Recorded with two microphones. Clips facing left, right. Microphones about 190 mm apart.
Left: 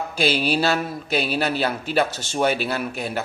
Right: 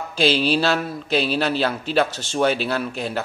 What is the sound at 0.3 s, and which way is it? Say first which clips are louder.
Speech: right 3 dB; 45° left (ahead or behind).